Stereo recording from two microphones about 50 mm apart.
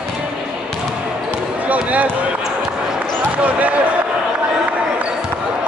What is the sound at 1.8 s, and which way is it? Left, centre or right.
Speech, right.